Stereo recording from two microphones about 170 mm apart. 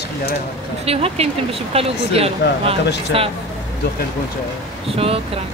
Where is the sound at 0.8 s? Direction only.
35° right (ahead or behind).